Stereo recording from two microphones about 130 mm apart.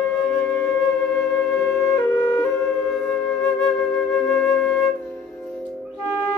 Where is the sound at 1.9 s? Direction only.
20° left (ahead or behind).